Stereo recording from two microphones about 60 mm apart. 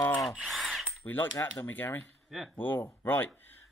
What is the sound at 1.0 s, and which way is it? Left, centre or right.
Cutlery, left.